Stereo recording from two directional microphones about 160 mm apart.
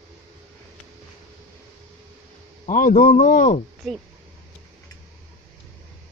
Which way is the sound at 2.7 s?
60° left (ahead or behind).